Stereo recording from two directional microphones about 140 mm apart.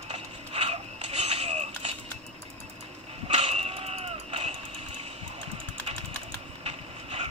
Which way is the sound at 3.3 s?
50° right (ahead or behind).